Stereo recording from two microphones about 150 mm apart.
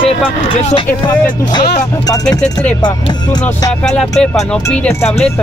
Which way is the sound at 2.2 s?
5° left (ahead or behind).